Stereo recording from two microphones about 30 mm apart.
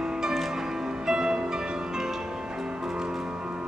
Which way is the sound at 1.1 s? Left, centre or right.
Right.